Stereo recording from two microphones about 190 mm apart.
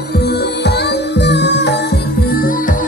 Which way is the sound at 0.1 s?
60° left (ahead or behind).